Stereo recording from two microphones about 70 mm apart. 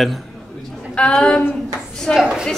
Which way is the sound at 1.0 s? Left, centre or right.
Centre.